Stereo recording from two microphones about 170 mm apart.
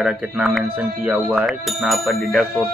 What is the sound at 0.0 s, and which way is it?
Speech, centre (ahead or behind).